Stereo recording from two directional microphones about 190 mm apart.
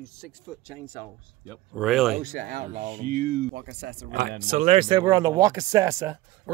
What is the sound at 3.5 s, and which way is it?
Speech, 65° right (ahead or behind).